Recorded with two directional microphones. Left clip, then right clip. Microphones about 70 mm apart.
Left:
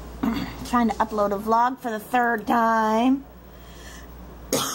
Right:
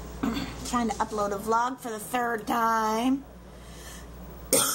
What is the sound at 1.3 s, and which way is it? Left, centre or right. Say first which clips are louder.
Speech: left 5 dB; left.